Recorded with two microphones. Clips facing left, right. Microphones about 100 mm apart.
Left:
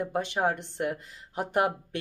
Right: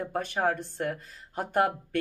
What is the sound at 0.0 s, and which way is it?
Speech, 15° left (ahead or behind).